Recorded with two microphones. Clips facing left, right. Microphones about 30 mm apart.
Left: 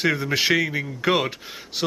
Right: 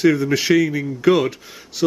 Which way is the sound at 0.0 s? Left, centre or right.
Centre.